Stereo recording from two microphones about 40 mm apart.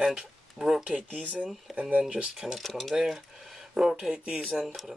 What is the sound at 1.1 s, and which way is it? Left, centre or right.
Speech, right.